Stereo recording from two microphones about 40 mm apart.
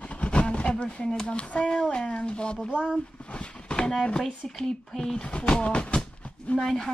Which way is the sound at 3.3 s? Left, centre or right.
Left.